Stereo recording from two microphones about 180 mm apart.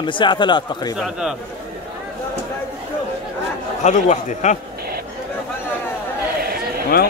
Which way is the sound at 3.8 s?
40° left (ahead or behind).